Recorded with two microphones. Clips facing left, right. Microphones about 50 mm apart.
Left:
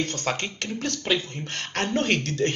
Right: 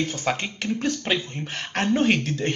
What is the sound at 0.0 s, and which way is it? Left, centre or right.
Speech, centre.